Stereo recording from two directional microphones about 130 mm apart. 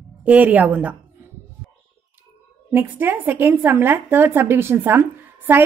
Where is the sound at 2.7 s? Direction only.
15° right (ahead or behind).